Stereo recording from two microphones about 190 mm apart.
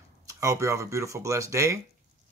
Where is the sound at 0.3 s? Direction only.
15° right (ahead or behind).